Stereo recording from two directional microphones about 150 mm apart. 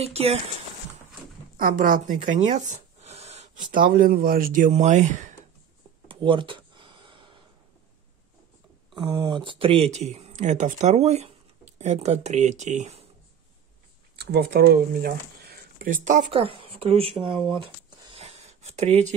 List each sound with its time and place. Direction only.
0.0 s speech: 45° right (ahead or behind)
1.6 s speech: 70° right (ahead or behind); by 3.6 s 45° right (ahead or behind)
3.7 s speech: 70° right (ahead or behind)
6.0 s a sound: 35° right (ahead or behind)
9.0 s speech: 25° right (ahead or behind); by 13.0 s 50° right (ahead or behind)
14.1 s speech: 90° right; by 16.2 s 60° right (ahead or behind)
16.3 s speech: 35° right (ahead or behind)
18.2 s a sound: 45° right (ahead or behind)